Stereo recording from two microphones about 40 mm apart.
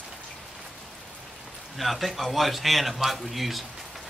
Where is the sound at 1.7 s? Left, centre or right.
Centre.